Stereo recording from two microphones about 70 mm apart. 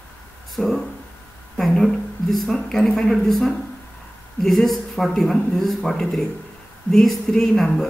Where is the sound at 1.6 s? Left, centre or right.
Centre.